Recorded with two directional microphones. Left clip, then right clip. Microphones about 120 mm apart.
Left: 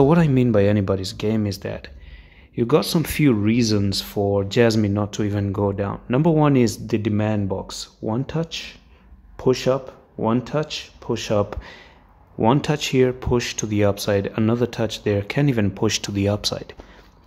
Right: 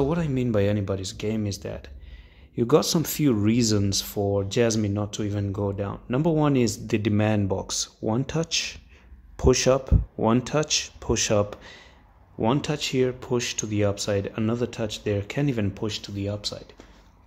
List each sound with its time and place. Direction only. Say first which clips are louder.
0.0 s speech: left 8 dB; 30° left (ahead or behind)
0.5 s speech: left 3 dB; 20° left (ahead or behind)
2.5 s speech: left 2 dB; centre (ahead or behind)
3.1 s speech: left 5 dB; 10° left (ahead or behind)
3.3 s speech: left 3 dB; centre (ahead or behind)
6.9 s speech: left 1 dB; 5° right (ahead or behind)
11.5 s speech: left 5 dB; 15° left (ahead or behind)
15.9 s speech: left 9 dB; 50° left (ahead or behind)